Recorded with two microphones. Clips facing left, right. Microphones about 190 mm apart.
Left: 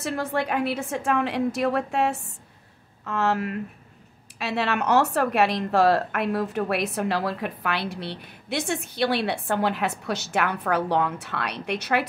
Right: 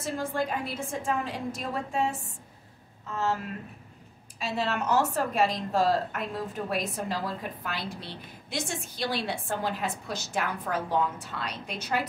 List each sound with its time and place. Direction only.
0.0 s speech: 70° left (ahead or behind)